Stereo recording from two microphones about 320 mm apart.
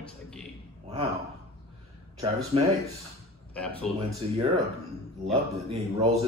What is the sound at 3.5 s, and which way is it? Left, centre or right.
Speech, centre.